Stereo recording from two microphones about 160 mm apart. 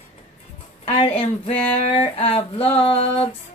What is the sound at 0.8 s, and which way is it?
A woman's voice, 40° left (ahead or behind).